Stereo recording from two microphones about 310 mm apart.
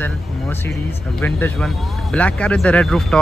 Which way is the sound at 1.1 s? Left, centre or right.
Centre.